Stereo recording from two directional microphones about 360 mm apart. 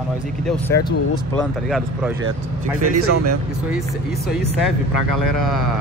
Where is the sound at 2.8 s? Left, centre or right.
Right.